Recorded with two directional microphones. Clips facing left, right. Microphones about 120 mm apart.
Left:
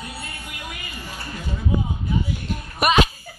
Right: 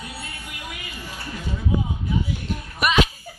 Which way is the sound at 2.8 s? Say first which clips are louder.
Left 2 dB; 50° left (ahead or behind).